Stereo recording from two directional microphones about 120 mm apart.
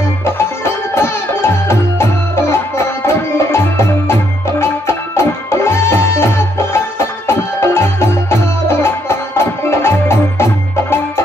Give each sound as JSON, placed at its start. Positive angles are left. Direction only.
{"t": 0.9, "sound": "music", "side_deg": 20}